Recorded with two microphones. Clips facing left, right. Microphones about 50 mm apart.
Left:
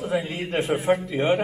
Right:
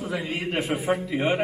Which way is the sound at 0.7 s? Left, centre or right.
Centre.